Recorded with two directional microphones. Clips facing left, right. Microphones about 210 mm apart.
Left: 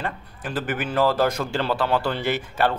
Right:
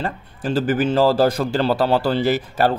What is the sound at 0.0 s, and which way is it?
Speech, 30° right (ahead or behind).